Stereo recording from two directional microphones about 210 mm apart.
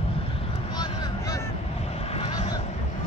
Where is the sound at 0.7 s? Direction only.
20° left (ahead or behind).